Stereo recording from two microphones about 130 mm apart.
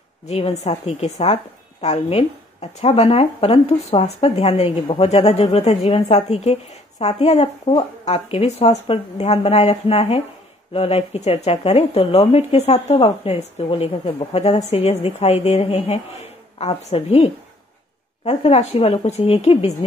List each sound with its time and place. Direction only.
0.3 s speech: 55° left (ahead or behind)